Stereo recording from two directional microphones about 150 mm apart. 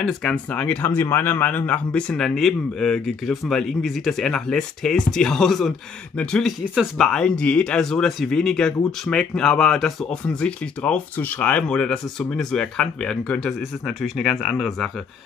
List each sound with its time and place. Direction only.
0.0 s a man's voice: 5° left (ahead or behind)